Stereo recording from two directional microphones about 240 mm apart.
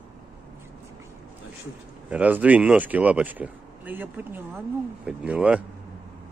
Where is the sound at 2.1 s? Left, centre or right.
Centre.